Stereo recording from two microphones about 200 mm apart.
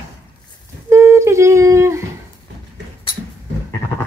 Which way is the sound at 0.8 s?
15° right (ahead or behind).